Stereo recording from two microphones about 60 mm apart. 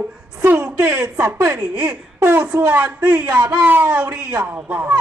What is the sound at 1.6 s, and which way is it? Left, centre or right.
Speech, centre.